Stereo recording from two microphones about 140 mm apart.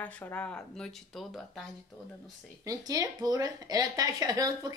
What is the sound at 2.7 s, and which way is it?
A woman's voice, 25° right (ahead or behind).